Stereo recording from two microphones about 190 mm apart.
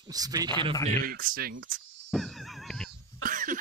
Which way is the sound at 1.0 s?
50° right (ahead or behind).